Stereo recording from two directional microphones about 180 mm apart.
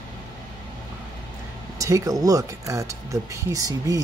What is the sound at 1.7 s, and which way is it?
Speech, 20° right (ahead or behind).